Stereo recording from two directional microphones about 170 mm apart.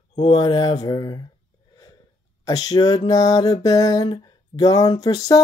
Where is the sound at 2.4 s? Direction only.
20° left (ahead or behind).